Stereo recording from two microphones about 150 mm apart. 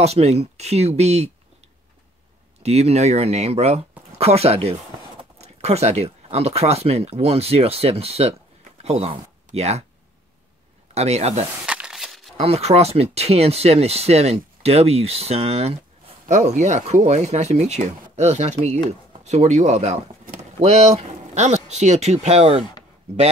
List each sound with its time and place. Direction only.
0.0 s speech: 45° right (ahead or behind)
2.6 s speech: 45° right (ahead or behind)
11.0 s speech: 45° right (ahead or behind)
11.6 s a sound: 5° right (ahead or behind)
12.4 s speech: 40° right (ahead or behind)